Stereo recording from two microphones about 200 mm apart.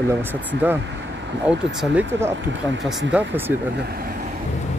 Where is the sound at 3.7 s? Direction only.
55° right (ahead or behind).